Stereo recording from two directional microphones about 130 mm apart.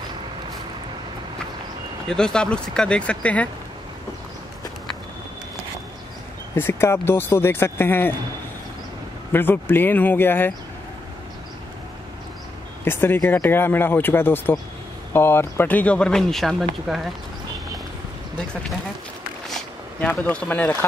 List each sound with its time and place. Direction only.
2.0 s speech: 5° left (ahead or behind)
6.5 s speech: 20° left (ahead or behind)
9.3 s speech: 15° left (ahead or behind)
12.8 s speech: 15° left (ahead or behind); by 17.0 s centre (ahead or behind)
19.5 s a sound: 10° left (ahead or behind)